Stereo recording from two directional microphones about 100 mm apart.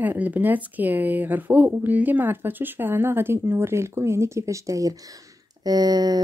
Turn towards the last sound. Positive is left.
turn(degrees=-40)  # may be behind; listen again after turning